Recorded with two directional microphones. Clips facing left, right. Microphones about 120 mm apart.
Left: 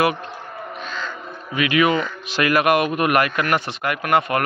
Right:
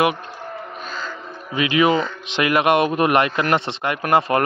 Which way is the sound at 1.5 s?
25° right (ahead or behind).